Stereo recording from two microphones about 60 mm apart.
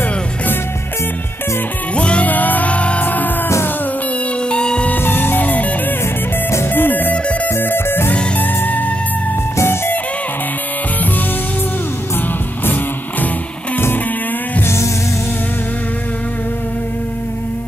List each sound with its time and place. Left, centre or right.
2.0 s music: left
4.5 s music: centre
4.8 s music: left
8.1 s music: left
9.6 s music: left
12.6 s music: left